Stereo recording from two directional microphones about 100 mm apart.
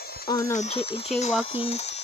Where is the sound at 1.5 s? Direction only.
80° left.